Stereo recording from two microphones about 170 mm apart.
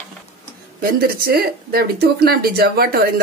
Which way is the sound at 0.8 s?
60° right (ahead or behind).